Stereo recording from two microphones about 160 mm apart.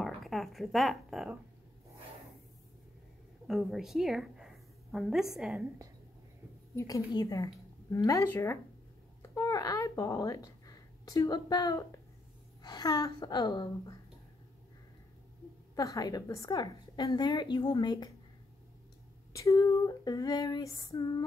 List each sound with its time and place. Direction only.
0.0 s speech: centre (ahead or behind)
3.4 s a woman's voice: centre (ahead or behind)
6.7 s a woman's voice: 20° left (ahead or behind)
15.7 s a woman's voice: 20° left (ahead or behind)
19.3 s a woman's voice: 20° left (ahead or behind)